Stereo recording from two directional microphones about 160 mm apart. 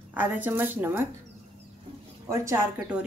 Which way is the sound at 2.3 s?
20° right (ahead or behind).